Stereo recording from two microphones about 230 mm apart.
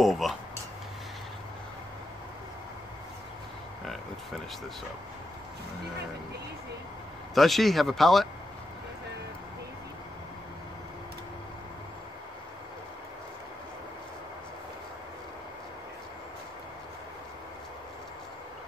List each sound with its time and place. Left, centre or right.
0.0 s speech: centre
3.8 s a sound: centre
7.3 s speech: centre